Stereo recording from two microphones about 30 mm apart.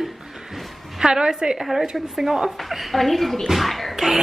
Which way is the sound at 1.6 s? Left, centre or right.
Centre.